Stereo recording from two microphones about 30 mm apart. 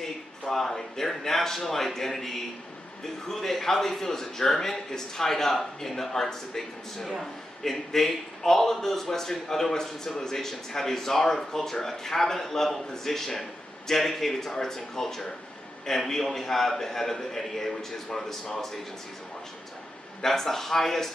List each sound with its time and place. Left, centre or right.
0.0 s a man's voice: centre
20.2 s a man's voice: centre